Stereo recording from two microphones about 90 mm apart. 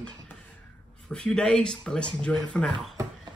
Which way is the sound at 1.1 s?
10° left (ahead or behind).